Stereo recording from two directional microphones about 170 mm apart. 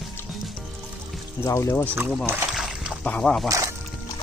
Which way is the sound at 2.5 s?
Centre (ahead or behind).